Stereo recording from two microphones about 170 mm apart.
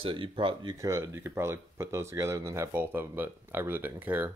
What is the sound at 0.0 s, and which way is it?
Speech, 30° right (ahead or behind).